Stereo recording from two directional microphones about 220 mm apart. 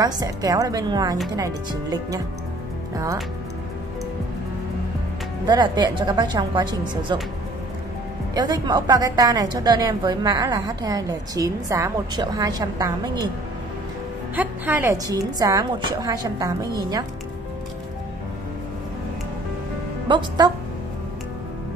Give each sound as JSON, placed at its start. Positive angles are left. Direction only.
{"t": 0.0, "sound": "a woman's voice", "side_deg": -15}
{"t": 5.5, "sound": "a woman's voice", "side_deg": -20}
{"t": 8.4, "sound": "a woman's voice", "side_deg": -20}
{"t": 14.3, "sound": "a woman's voice", "side_deg": -10}
{"t": 20.1, "sound": "a woman's voice", "side_deg": -20}